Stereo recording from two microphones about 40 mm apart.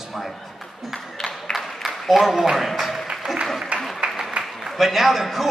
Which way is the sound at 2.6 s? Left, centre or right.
Centre.